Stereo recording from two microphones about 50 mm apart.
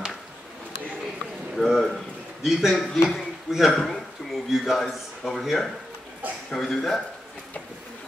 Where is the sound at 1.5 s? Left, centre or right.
Centre.